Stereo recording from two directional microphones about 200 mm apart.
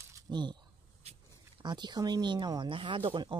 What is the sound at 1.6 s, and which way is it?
Speech, 20° right (ahead or behind).